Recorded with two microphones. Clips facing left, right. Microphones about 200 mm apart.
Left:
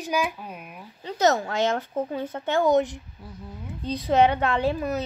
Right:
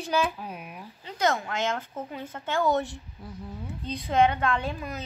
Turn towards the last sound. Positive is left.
turn(degrees=25)  # may be behind; listen again after turning